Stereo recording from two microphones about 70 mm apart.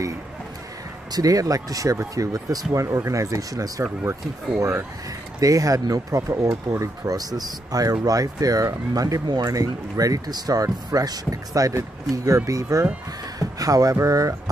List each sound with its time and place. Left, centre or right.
1.1 s speech: right
3.8 s speech: right
5.4 s speech: right